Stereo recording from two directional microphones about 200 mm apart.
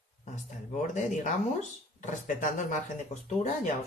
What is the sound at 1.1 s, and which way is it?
Speech, 35° left (ahead or behind).